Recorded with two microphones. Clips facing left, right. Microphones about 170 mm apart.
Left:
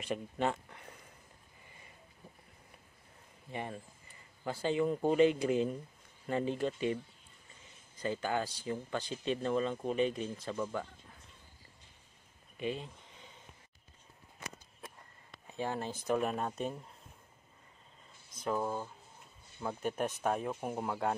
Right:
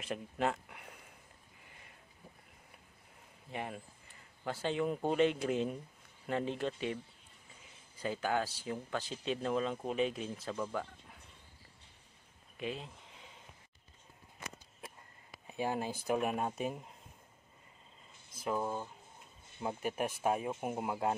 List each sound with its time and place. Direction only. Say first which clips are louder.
0.0 s a man's voice: left 1 dB; centre (ahead or behind)
3.5 s a man's voice: left 1 dB; 5° right (ahead or behind)
12.5 s a sound: left 3 dB; centre (ahead or behind)
15.5 s speech: right 1 dB; 10° right (ahead or behind)
18.4 s a man's voice: left 1 dB; centre (ahead or behind)